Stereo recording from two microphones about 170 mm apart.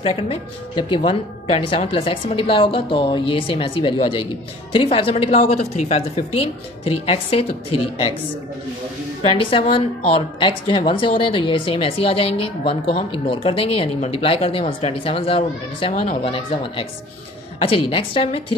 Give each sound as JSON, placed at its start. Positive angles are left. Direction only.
{"t": 0.0, "sound": "a woman's voice", "side_deg": 35}
{"t": 9.2, "sound": "a woman's voice", "side_deg": 30}